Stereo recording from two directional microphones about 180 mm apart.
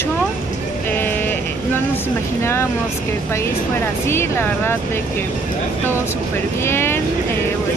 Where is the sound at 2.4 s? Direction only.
15° left (ahead or behind).